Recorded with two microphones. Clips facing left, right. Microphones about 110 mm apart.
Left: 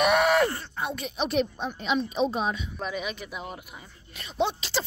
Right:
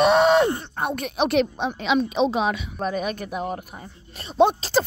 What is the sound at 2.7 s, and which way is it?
A woman's voice, 40° right (ahead or behind).